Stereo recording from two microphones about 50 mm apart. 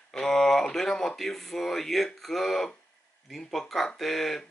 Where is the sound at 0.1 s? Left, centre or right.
Centre.